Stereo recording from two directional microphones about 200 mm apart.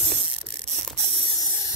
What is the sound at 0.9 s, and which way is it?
Mechanisms, 30° right (ahead or behind).